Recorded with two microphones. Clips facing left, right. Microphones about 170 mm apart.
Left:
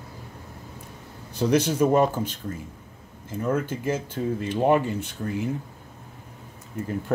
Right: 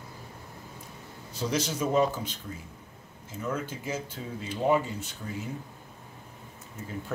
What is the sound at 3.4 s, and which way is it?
Speech, 50° left (ahead or behind).